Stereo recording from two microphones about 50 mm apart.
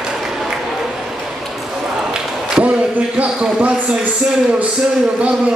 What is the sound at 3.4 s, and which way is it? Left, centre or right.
A man's voice, right.